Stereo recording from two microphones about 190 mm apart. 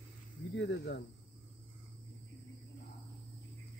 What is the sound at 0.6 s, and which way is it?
Speech, 65° left (ahead or behind).